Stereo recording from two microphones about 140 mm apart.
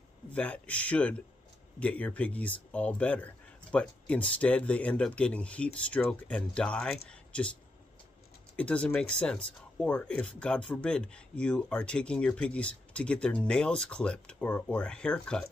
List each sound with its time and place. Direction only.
0.3 s speech: 10° left (ahead or behind)
8.5 s speech: 10° left (ahead or behind)